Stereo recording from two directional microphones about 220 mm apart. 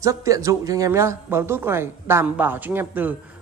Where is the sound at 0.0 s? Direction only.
15° right (ahead or behind).